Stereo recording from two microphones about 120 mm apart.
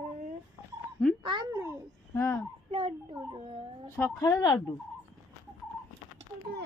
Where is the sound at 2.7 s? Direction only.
50° right (ahead or behind).